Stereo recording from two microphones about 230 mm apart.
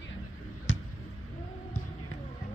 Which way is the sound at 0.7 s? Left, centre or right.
Left.